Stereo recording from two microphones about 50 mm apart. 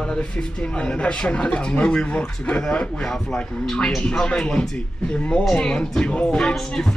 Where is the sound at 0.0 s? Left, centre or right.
Centre.